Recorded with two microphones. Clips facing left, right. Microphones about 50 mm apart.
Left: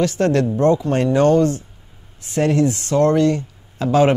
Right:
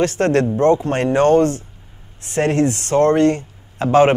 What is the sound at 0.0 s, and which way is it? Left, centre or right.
Speech, right.